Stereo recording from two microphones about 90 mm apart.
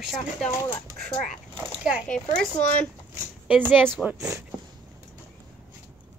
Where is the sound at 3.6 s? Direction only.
20° right (ahead or behind).